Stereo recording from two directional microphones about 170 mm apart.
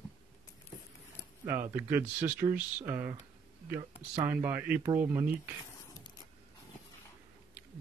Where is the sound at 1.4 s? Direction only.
15° right (ahead or behind).